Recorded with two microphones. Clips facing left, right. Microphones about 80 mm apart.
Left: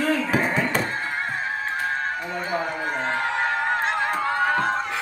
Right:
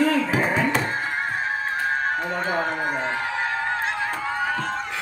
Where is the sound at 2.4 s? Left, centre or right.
Right.